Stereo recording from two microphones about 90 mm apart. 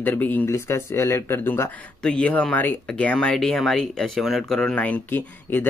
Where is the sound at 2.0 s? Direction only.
10° left (ahead or behind).